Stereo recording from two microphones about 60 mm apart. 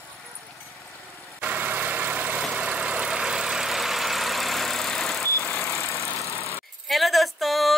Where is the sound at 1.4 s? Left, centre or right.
Right; by 5.2 s centre.